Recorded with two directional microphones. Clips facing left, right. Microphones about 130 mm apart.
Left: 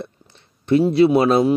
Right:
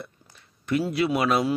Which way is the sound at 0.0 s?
30° left (ahead or behind).